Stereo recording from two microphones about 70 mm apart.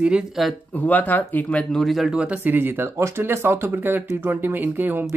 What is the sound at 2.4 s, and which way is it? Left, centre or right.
Speech, right.